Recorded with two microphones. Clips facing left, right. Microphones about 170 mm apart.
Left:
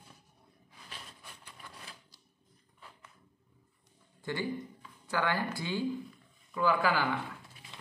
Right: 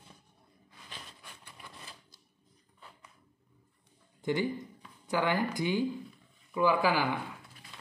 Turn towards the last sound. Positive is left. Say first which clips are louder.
# right 1 dB
turn(degrees=-15)  # may be behind; listen again after turning